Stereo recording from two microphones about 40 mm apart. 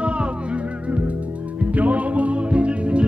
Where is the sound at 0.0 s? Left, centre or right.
Right.